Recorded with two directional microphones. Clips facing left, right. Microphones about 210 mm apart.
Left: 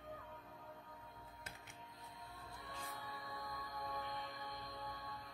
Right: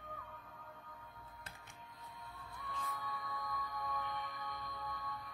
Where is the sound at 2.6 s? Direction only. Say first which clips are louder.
Right 6 dB; 30° left (ahead or behind).